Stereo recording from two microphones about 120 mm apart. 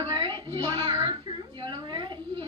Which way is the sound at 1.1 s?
45° right (ahead or behind).